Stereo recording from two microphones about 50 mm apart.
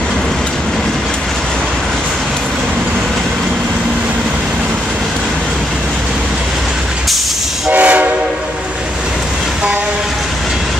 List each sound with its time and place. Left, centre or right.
7.7 s train: right